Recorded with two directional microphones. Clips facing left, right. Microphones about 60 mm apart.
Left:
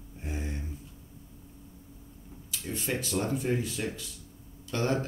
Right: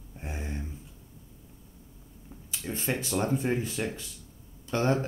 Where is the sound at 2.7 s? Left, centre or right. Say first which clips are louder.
Right 1 dB; right.